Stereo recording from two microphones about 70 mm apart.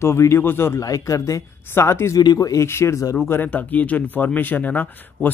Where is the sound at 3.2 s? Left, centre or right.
Left.